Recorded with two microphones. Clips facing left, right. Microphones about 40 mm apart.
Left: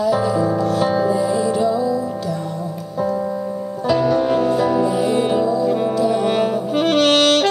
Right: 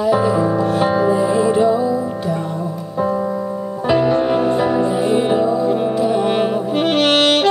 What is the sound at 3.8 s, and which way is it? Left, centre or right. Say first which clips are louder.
Music: right 1 dB; right.